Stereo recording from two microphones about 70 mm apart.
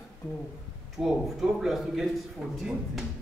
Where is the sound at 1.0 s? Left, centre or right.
Centre.